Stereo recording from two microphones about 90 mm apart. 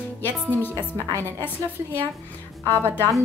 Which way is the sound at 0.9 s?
35° right (ahead or behind).